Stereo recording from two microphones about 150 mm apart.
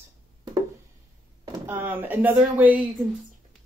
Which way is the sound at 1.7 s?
15° right (ahead or behind).